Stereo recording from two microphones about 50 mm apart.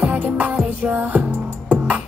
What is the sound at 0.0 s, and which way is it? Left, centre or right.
Music, right.